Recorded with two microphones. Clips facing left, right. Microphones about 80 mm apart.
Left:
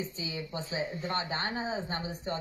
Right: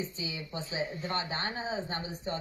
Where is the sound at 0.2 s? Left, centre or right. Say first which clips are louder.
Left 1 dB; left.